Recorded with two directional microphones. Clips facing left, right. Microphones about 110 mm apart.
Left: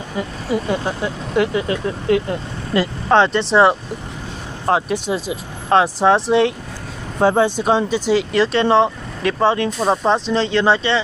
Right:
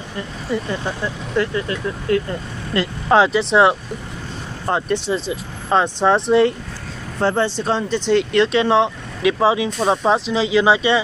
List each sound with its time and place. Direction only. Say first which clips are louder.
0.5 s speech: left 2 dB; 5° left (ahead or behind)
1.0 s speech: left 2 dB; 80° left
2.2 s speech: left 3 dB; 5° left (ahead or behind)
7.2 s speech: left 4 dB; 10° left (ahead or behind); by 11.0 s 10° right (ahead or behind)